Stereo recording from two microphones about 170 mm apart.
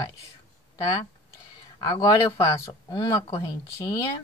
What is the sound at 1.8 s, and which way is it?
Speech, 20° left (ahead or behind).